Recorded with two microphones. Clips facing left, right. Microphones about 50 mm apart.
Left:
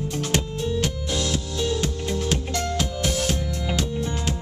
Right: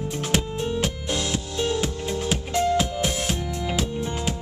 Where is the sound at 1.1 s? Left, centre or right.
Centre.